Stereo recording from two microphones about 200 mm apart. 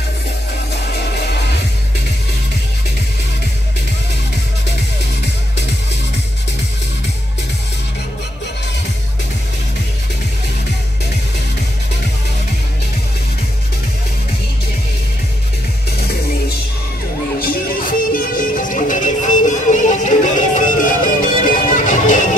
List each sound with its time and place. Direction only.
17.4 s music: 45° left (ahead or behind)